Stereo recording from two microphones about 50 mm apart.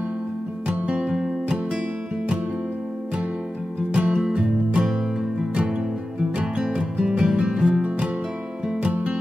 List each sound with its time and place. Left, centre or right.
0.7 s music: right
3.9 s music: centre